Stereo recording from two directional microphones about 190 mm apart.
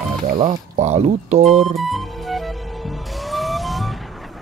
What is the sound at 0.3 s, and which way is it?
Speech, 40° right (ahead or behind).